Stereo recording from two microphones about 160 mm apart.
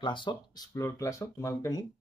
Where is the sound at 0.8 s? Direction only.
15° left (ahead or behind).